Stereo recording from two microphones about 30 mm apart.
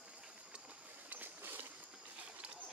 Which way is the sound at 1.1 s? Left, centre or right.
Right.